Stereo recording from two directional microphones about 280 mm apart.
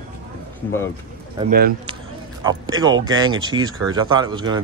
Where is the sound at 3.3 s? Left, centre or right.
Centre.